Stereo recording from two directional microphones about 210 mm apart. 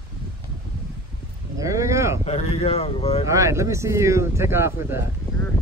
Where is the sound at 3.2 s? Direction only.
15° right (ahead or behind).